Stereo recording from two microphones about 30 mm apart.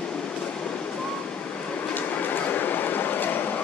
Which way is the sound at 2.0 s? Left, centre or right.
Left.